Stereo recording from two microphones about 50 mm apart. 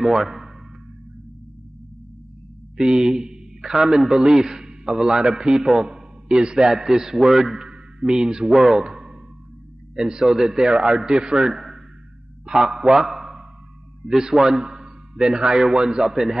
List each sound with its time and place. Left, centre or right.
0.0 s speech: centre
2.8 s a man's voice: centre
7.6 s a sound: centre
8.5 s a man's voice: centre